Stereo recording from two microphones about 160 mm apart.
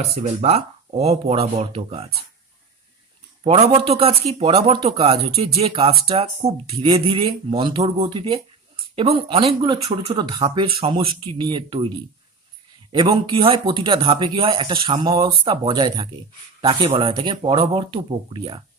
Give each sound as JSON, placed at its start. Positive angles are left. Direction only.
{"t": 0.0, "sound": "speech", "side_deg": -45}
{"t": 3.4, "sound": "speech", "side_deg": -40}
{"t": 12.9, "sound": "speech", "side_deg": -30}